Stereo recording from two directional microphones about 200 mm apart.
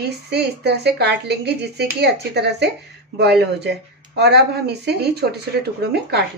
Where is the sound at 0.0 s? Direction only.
55° right (ahead or behind).